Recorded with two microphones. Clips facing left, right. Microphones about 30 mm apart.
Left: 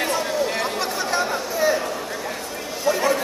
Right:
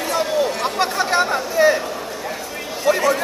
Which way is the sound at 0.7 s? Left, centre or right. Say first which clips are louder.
Right 5 dB; right.